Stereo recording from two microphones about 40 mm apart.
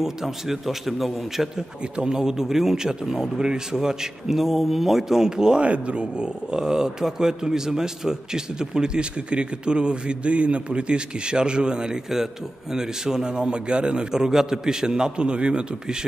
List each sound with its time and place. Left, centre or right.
0.0 s a man's voice: centre
1.8 s speech: right
2.1 s a man's voice: centre
5.6 s a man's voice: right